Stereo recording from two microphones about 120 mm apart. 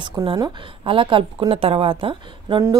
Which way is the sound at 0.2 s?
30° right (ahead or behind).